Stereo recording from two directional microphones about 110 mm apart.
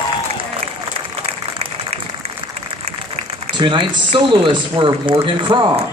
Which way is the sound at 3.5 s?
45° right (ahead or behind).